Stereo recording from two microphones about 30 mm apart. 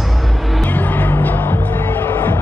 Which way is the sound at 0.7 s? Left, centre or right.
Left.